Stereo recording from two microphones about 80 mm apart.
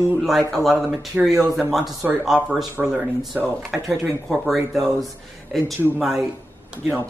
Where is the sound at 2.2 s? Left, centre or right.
Centre.